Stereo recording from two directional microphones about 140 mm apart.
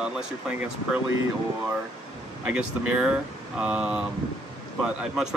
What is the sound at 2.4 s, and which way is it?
Speech, 10° right (ahead or behind).